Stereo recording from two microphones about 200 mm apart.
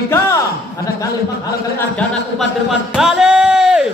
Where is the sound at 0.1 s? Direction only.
15° left (ahead or behind).